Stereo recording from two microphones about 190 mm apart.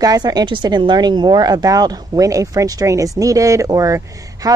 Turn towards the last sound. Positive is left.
turn(degrees=-15)  # may be behind; listen again after turning